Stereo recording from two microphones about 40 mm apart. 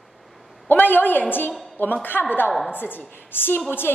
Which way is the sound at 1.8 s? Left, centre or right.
Left.